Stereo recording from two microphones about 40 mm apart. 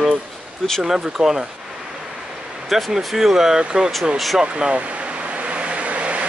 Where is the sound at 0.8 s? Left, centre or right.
Centre.